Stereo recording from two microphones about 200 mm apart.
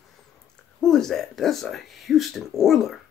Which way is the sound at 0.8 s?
Centre (ahead or behind).